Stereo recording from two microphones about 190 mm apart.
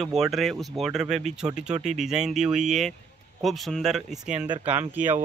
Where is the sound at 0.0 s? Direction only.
Centre (ahead or behind).